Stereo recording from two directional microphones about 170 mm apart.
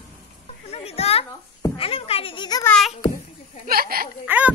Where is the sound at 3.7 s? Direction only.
60° right (ahead or behind).